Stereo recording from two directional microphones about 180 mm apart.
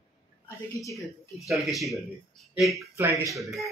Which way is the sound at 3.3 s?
Centre (ahead or behind).